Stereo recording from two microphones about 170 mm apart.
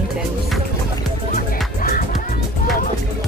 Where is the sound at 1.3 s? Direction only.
55° left (ahead or behind).